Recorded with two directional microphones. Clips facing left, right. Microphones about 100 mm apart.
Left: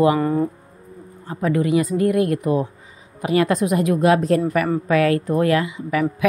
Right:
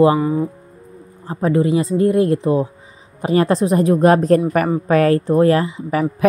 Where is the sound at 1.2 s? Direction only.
30° right (ahead or behind).